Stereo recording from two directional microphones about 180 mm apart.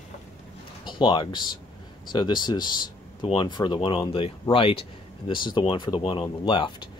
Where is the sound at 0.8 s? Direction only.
25° left (ahead or behind).